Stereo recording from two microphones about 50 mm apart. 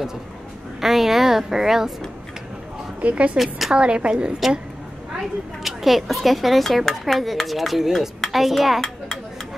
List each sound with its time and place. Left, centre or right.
0.7 s a woman's voice: centre
3.0 s speech: right
3.3 s speech: centre
3.7 s a woman's voice: centre
5.6 s a child's voice: centre